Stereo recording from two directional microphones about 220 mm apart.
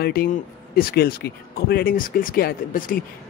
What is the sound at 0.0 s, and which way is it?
Speech, 45° left (ahead or behind).